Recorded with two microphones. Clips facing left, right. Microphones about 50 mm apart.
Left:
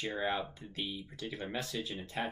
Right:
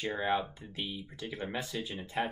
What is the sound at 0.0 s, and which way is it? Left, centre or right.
Speech, centre.